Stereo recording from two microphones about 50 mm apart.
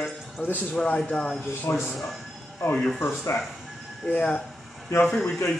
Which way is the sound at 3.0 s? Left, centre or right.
Left.